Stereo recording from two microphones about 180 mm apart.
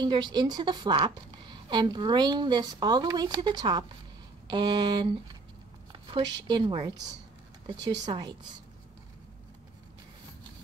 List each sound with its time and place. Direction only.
0.0 s a woman's voice: 25° right (ahead or behind)
5.9 s a sound: 25° right (ahead or behind)
6.4 s a woman's voice: 25° right (ahead or behind)
8.1 s a woman's voice: 25° right (ahead or behind)